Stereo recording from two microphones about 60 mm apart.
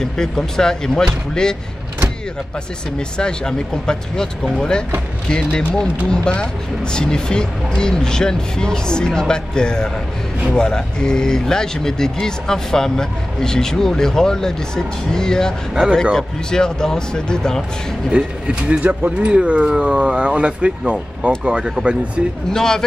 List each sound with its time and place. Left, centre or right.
0.0 s speech: centre
3.2 s speech: centre
6.0 s speech: centre
15.7 s speech: centre
16.0 s speech: centre
18.1 s speech: centre
22.5 s speech: centre